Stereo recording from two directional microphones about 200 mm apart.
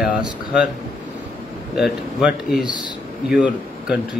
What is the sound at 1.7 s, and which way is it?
A man's voice, 5° right (ahead or behind).